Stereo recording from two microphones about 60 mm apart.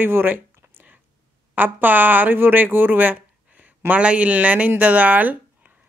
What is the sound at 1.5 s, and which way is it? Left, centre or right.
Speech, right.